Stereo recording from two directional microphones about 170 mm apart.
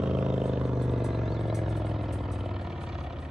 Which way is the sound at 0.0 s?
5° right (ahead or behind).